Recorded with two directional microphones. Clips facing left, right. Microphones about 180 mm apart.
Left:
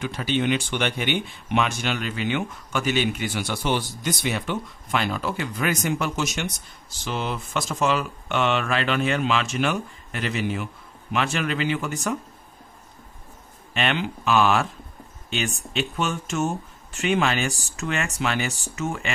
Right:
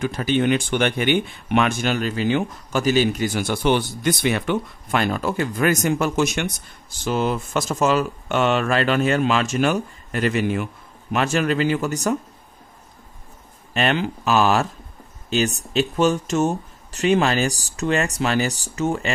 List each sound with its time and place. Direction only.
0.0 s speech: 45° right (ahead or behind)
13.7 s speech: 40° right (ahead or behind)